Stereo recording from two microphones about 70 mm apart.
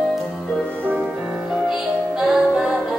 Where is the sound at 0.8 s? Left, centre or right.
Right.